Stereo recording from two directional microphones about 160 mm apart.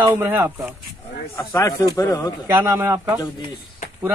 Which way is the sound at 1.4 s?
20° left (ahead or behind).